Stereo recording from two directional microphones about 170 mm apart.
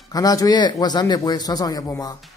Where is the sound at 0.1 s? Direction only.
20° left (ahead or behind).